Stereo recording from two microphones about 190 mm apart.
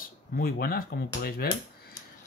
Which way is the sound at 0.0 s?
50° left (ahead or behind).